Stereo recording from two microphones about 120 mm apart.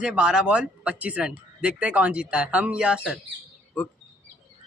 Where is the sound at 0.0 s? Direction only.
5° right (ahead or behind).